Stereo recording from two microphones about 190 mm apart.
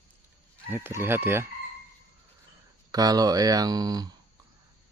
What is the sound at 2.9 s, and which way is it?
Speech, 20° right (ahead or behind).